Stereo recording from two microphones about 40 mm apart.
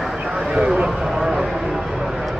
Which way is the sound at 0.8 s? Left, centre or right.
Centre.